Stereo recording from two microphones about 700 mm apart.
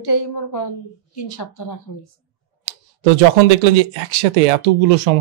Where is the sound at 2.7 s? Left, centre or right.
Right.